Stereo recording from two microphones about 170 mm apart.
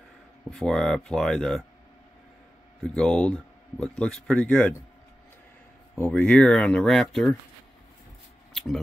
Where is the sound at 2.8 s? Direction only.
5° left (ahead or behind).